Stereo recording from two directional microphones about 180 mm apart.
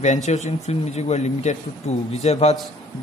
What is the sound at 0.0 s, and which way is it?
A man's voice, 40° left (ahead or behind).